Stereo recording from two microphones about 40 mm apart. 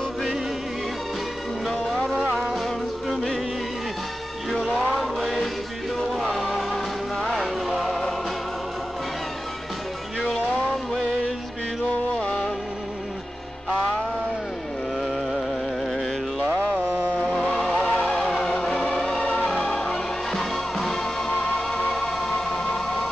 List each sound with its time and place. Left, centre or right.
2.3 s music: centre
4.5 s music: centre
4.9 s chant: centre
6.1 s music: centre
12.2 s music: centre
15.0 s music: centre
17.2 s music: left
17.6 s music: centre